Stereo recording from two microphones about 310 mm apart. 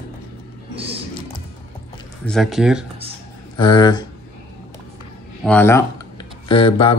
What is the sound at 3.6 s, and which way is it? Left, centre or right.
Speech, centre.